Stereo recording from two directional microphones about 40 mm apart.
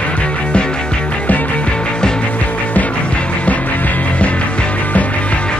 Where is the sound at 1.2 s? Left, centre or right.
Left.